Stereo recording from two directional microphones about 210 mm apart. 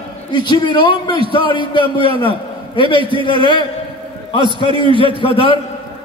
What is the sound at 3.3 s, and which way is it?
Speech, 25° left (ahead or behind).